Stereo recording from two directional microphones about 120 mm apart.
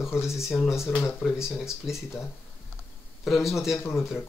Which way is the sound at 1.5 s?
Centre (ahead or behind).